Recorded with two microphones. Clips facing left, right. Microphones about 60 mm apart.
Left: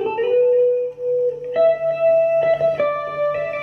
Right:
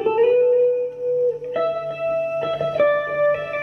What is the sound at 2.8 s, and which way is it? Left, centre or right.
Music, right.